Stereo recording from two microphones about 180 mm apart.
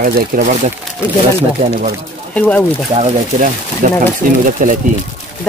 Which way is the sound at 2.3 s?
10° left (ahead or behind).